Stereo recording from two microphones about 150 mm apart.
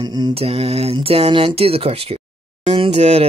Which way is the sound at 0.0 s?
30° right (ahead or behind).